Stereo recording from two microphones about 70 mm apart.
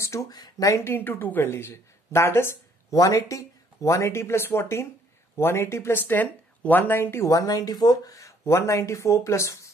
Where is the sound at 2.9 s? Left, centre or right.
Left.